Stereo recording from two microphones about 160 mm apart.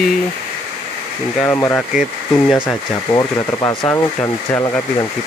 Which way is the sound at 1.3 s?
15° left (ahead or behind).